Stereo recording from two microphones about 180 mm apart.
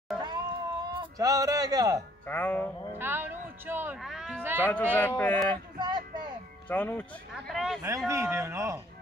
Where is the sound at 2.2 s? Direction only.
10° left (ahead or behind).